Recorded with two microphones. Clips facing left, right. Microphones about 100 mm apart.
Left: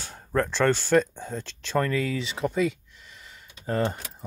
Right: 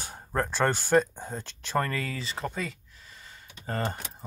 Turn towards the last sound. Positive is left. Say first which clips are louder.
# left 5 dB
turn(degrees=0)  # may be behind; listen again after turning